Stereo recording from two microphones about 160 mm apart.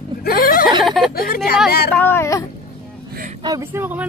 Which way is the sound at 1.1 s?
70° left (ahead or behind).